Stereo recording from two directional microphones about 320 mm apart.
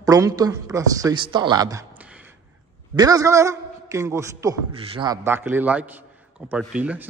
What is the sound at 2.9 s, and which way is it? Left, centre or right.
A man's voice, centre.